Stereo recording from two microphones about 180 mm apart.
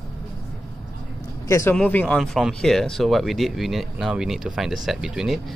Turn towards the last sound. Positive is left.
turn(degrees=0)  # may be behind; listen again after turning